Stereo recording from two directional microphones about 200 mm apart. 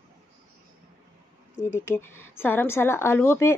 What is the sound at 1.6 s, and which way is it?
Speech, 10° left (ahead or behind).